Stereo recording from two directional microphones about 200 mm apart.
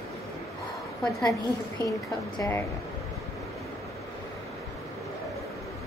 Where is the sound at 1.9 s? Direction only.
15° left (ahead or behind).